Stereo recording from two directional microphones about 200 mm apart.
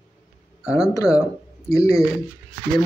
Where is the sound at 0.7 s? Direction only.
15° left (ahead or behind).